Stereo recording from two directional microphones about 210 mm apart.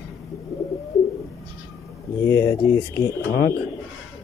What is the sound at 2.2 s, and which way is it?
Speech, 15° left (ahead or behind).